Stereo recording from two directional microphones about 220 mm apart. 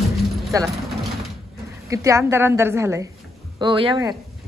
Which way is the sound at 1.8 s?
15° right (ahead or behind).